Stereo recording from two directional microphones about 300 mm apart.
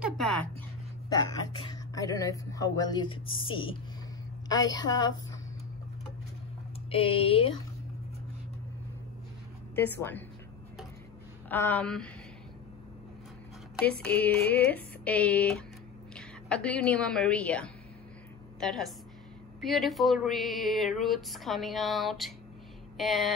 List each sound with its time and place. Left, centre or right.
0.0 s a sound: centre
1.5 s speech: centre
6.9 s speech: centre
9.8 s speech: centre
11.4 s speech: centre
14.0 s a woman's voice: centre